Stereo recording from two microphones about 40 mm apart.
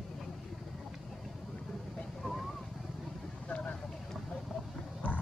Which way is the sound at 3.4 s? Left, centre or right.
Left.